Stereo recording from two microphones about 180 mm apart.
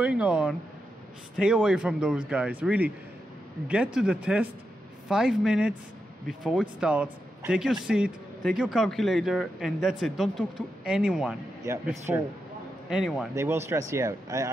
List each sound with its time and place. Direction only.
0.0 s speech: 5° right (ahead or behind)
11.6 s speech: 15° right (ahead or behind)
12.9 s speech: 5° right (ahead or behind)
13.3 s speech: 15° right (ahead or behind)